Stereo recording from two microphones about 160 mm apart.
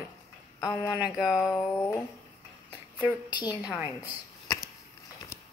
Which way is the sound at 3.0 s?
25° left (ahead or behind).